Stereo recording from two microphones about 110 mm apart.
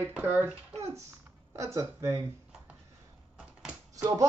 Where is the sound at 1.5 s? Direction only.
25° right (ahead or behind).